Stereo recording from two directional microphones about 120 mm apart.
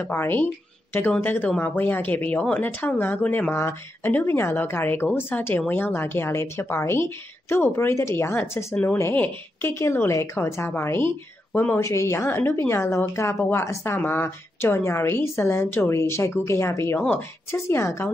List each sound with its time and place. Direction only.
0.0 s a woman's voice: 20° left (ahead or behind)